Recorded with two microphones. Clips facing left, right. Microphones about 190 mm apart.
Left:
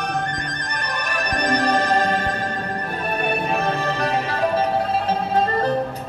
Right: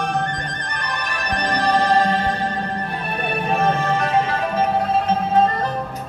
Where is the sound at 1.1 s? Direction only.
45° left (ahead or behind).